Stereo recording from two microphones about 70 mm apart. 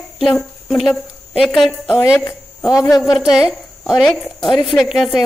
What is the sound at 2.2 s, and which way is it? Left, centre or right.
Speech, left.